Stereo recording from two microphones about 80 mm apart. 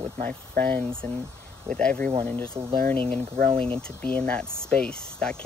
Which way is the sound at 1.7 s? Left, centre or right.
Centre.